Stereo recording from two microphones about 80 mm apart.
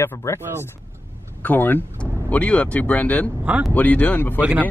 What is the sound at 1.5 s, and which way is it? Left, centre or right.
A man's voice, left.